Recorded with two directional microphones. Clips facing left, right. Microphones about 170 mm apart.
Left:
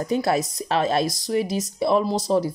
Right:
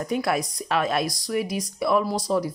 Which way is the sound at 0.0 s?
25° left (ahead or behind).